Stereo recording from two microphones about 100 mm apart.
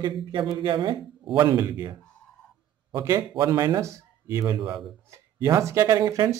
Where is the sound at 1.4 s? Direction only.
30° right (ahead or behind).